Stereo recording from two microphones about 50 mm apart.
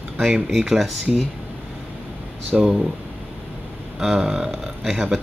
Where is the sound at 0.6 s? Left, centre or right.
Centre.